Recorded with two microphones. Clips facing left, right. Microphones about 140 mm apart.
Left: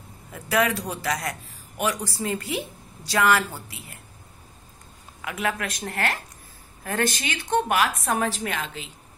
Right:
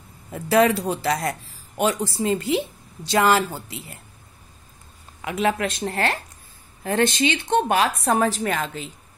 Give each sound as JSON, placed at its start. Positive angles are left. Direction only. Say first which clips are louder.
{"t": 0.3, "sound": "a woman's voice", "louder": "right 6 dB", "side_deg": -30}
{"t": 5.2, "sound": "a woman's voice", "louder": "right 6 dB", "side_deg": -25}